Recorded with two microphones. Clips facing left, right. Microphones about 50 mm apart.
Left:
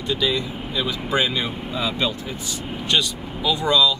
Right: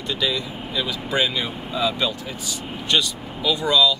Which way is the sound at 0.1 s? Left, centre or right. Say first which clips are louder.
Left 2 dB; left.